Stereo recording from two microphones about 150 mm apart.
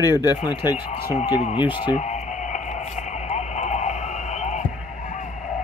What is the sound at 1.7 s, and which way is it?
Speech, 35° left (ahead or behind).